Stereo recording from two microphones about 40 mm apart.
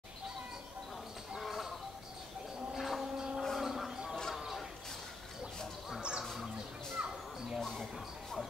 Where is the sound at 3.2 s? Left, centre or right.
Centre.